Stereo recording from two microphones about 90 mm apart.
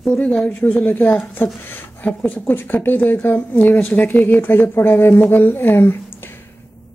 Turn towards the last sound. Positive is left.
turn(degrees=25)  # may be behind; listen again after turning